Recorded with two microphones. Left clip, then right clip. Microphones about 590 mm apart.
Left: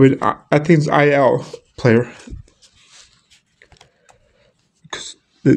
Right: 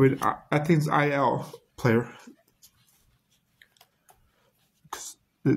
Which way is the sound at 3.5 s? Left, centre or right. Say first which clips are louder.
Left 7 dB; right.